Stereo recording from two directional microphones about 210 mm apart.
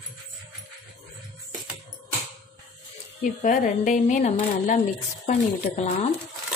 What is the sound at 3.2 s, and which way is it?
Speech, 40° left (ahead or behind).